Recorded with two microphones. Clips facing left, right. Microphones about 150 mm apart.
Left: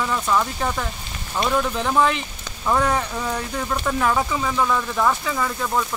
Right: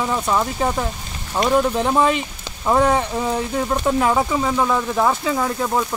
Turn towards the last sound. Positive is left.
turn(degrees=-20)  # may be behind; listen again after turning